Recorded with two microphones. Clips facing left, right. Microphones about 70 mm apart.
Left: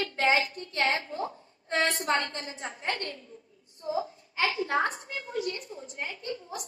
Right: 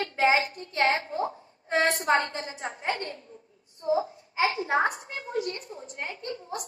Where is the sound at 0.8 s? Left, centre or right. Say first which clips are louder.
Right 4 dB; right.